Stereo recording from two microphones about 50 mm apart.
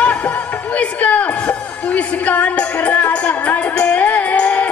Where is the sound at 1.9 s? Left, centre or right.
Left.